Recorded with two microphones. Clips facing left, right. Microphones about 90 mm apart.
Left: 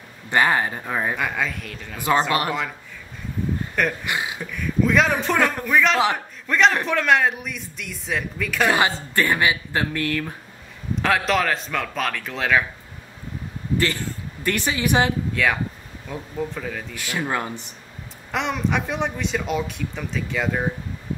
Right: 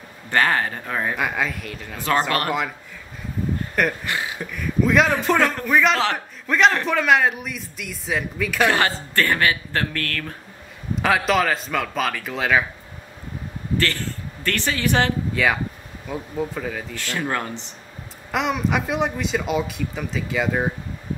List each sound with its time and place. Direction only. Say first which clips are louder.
0.3 s speech: left 1 dB; 15° left (ahead or behind)
1.1 s speech: right 1 dB; 5° right (ahead or behind)
4.0 s speech: even; 15° left (ahead or behind)
4.4 s speech: right 1 dB; centre (ahead or behind)
8.6 s speech: left 2 dB; 10° left (ahead or behind)
11.0 s speech: right 1 dB; 5° right (ahead or behind)
13.7 s a man's voice: even; 15° left (ahead or behind)
15.3 s speech: right 1 dB; centre (ahead or behind)
16.9 s speech: left 1 dB; 10° left (ahead or behind)
18.3 s speech: right 2 dB; 5° right (ahead or behind)